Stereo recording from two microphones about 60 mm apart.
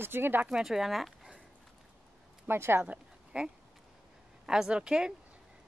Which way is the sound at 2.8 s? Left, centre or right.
Centre.